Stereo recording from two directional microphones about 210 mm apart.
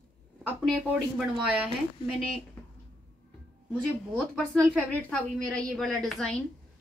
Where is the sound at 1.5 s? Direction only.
5° right (ahead or behind).